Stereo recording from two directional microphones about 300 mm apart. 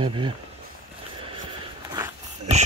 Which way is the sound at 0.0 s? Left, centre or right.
Centre.